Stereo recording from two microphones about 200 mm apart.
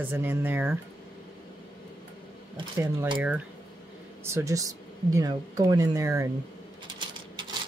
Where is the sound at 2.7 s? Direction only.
15° right (ahead or behind).